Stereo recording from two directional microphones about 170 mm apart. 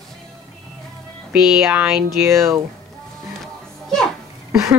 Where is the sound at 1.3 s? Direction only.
5° right (ahead or behind).